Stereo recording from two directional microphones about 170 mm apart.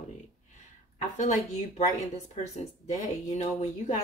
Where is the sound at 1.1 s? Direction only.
45° left (ahead or behind).